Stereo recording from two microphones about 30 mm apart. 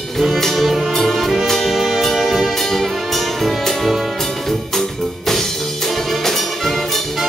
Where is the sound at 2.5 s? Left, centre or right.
Centre.